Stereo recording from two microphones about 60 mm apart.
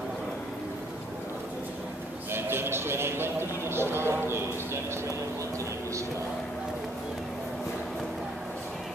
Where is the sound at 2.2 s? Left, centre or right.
Right.